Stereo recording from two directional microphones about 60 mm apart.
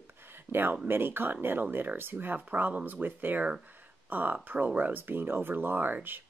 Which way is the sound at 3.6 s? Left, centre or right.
Right.